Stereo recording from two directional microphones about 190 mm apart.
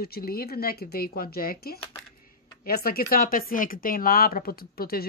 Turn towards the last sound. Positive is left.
turn(degrees=50)  # may be behind; listen again after turning